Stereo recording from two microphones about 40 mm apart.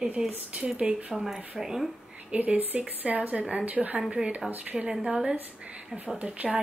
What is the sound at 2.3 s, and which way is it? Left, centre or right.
Speech, right.